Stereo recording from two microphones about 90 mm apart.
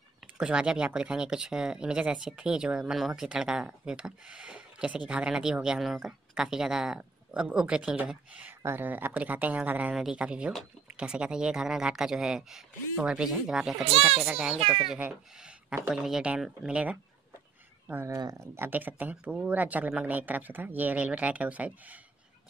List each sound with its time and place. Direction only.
0.4 s speech: 10° right (ahead or behind)
13.8 s a child's voice: 90° right
14.2 s speech: 10° right (ahead or behind)
14.6 s a child's voice: 90° right
15.9 s speech: 5° right (ahead or behind)
18.0 s speech: 35° right (ahead or behind)
18.7 s speech: 20° right (ahead or behind)